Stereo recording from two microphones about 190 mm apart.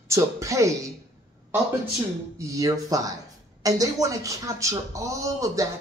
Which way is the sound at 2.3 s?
15° right (ahead or behind).